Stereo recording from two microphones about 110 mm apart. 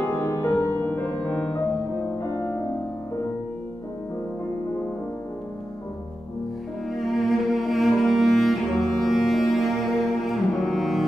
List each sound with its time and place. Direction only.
0.0 s music: 15° left (ahead or behind)
6.9 s cello: centre (ahead or behind)